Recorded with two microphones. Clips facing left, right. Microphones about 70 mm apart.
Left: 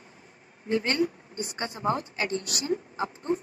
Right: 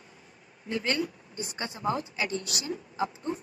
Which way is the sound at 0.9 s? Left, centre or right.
Left.